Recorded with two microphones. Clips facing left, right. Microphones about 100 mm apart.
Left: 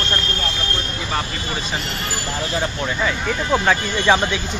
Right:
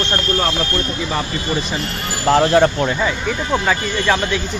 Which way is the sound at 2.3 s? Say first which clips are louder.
Right 13 dB; 70° right (ahead or behind).